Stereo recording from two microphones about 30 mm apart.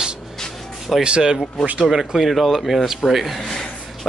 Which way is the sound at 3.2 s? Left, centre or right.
Centre.